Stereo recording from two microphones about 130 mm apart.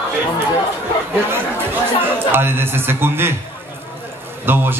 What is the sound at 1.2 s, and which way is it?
A man's voice, 15° right (ahead or behind).